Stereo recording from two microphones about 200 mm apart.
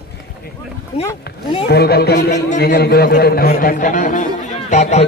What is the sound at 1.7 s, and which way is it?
A man's voice, 55° left (ahead or behind).